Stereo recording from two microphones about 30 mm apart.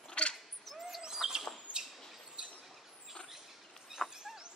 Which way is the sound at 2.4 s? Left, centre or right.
Right.